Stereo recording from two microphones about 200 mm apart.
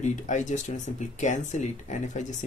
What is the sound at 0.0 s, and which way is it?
Speech, 35° left (ahead or behind).